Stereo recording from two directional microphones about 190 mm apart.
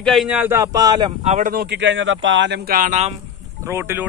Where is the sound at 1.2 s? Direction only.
40° right (ahead or behind); by 2.8 s 65° right (ahead or behind).